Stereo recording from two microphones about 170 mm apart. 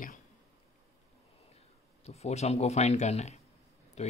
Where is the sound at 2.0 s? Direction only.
40° left (ahead or behind).